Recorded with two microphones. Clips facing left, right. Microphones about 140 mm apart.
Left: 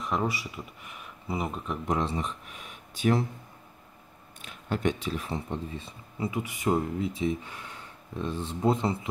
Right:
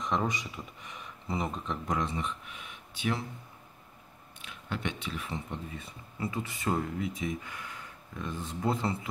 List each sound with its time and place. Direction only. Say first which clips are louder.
0.0 s speech: left 1 dB; 5° left (ahead or behind)
1.9 s speech: left 4 dB; 30° left (ahead or behind)
4.4 s speech: left 6 dB; 40° left (ahead or behind); by 9.1 s 20° left (ahead or behind)